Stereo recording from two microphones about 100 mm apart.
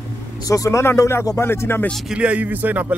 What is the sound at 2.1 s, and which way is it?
Speech, 10° right (ahead or behind).